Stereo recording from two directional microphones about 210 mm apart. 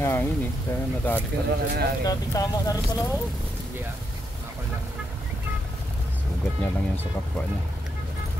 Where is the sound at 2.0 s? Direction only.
15° left (ahead or behind).